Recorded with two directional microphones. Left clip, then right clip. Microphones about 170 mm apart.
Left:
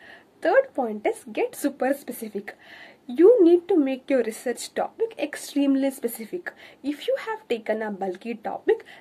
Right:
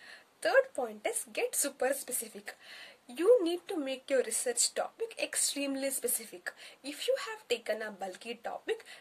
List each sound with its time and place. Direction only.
0.4 s speech: 20° right (ahead or behind)